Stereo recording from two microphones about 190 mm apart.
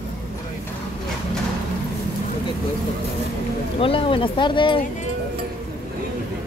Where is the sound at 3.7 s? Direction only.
30° left (ahead or behind).